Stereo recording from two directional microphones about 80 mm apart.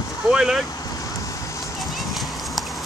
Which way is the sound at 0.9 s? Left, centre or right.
Left.